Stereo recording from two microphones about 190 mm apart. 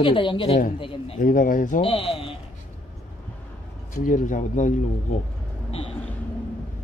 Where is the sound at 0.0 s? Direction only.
25° left (ahead or behind).